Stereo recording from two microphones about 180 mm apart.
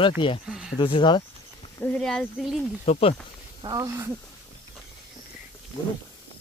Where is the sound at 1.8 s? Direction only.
5° left (ahead or behind).